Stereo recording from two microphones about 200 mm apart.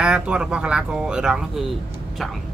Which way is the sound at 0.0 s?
5° right (ahead or behind).